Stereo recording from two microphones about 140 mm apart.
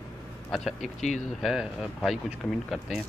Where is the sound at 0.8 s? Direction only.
60° left (ahead or behind).